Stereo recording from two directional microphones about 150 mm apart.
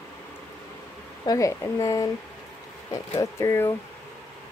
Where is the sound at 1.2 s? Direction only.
20° left (ahead or behind).